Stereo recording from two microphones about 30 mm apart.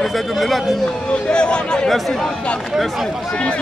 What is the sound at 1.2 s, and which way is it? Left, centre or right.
Speech, left.